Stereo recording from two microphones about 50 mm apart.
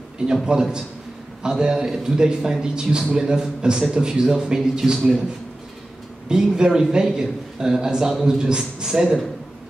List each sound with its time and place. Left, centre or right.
0.3 s a man's voice: centre
6.2 s a man's voice: centre
8.4 s a man's voice: centre